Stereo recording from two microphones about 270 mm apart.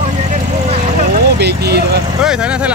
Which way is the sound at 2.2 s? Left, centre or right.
Centre.